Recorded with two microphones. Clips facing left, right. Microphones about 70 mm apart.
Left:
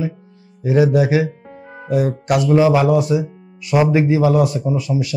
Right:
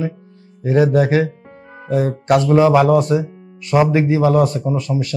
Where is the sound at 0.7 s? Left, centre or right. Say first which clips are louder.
Even; right.